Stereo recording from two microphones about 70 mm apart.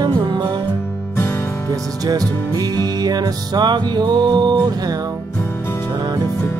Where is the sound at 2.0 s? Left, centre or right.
Right.